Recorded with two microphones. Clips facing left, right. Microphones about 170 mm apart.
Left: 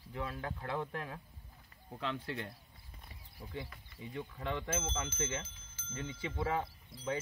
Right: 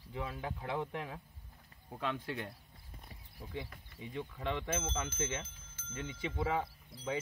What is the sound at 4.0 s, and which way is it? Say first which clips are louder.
Speech: right 1 dB; 20° right (ahead or behind).